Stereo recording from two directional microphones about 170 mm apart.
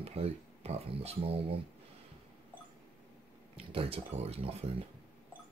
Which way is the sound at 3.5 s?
35° right (ahead or behind).